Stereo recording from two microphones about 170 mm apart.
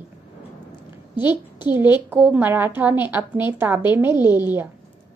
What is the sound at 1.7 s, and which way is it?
A woman's voice, 10° right (ahead or behind).